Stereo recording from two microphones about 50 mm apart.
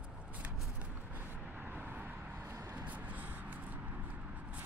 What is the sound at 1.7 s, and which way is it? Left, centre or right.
Vehicle, right.